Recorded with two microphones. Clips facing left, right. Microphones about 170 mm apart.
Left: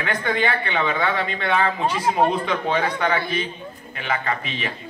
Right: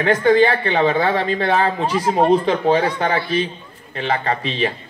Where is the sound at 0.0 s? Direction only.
35° right (ahead or behind).